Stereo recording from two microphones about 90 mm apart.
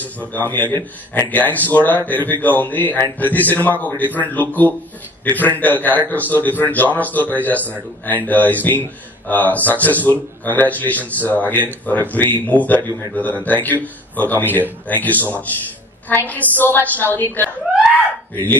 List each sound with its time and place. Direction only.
0.0 s speech: 20° left (ahead or behind)